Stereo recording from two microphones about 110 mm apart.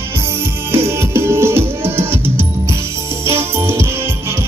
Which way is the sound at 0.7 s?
25° right (ahead or behind).